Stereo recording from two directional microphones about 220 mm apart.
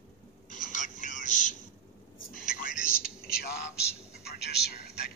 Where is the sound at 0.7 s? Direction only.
35° left (ahead or behind).